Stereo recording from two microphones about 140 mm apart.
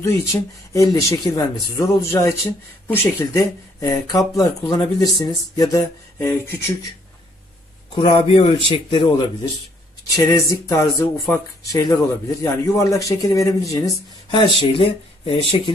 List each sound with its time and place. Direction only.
0.0 s speech: 20° left (ahead or behind)
6.3 s speech: 15° left (ahead or behind)
7.9 s speech: 35° left (ahead or behind)
10.1 s speech: 20° left (ahead or behind)
14.6 s speech: 40° left (ahead or behind)